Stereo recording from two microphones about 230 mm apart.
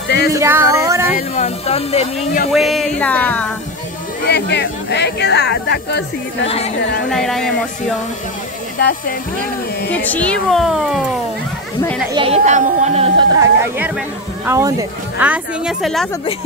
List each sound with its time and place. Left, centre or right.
0.3 s a sound: centre
1.1 s speech: left
2.5 s speech: centre
4.3 s speech: left
6.4 s speech: left
7.1 s speech: centre
8.7 s speech: left
9.8 s speech: centre
12.1 s speech: right
13.4 s speech: centre